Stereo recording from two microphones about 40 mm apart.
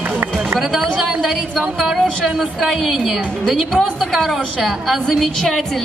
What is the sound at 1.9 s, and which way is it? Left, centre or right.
Speech, centre.